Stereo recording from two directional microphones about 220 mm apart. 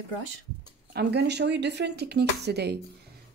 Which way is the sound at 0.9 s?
50° right (ahead or behind).